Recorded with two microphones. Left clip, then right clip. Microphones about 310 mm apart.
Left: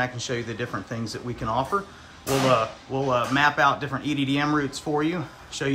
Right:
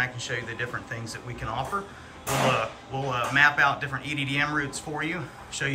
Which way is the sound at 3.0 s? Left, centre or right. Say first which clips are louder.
Even; centre.